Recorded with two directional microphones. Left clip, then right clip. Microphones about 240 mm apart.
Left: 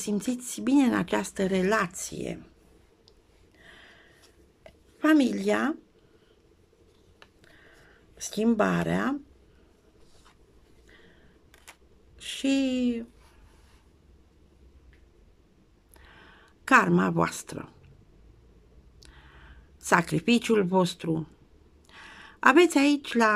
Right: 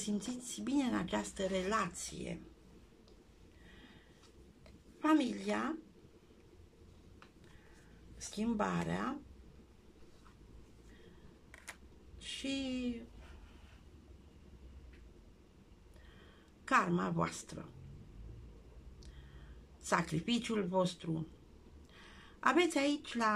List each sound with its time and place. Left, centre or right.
0.0 s speech: left
5.0 s speech: left
8.3 s speech: left
12.2 s a sound: left
16.1 s a sound: left
19.0 s speech: left